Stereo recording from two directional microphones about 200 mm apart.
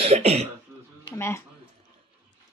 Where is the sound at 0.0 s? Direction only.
30° right (ahead or behind).